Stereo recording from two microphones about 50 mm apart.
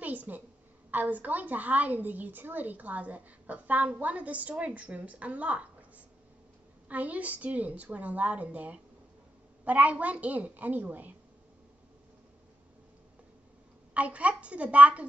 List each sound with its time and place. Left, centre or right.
0.0 s a sound: right
0.9 s a woman's voice: right
13.9 s a woman's voice: right